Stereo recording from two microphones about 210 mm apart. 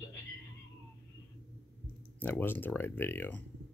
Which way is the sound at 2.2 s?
10° left (ahead or behind).